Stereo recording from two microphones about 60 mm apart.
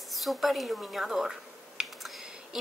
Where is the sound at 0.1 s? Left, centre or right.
Centre.